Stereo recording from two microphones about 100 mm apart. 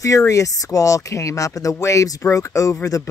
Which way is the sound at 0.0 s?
30° left (ahead or behind).